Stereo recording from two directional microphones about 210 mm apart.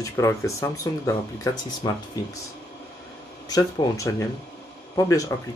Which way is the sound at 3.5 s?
15° left (ahead or behind).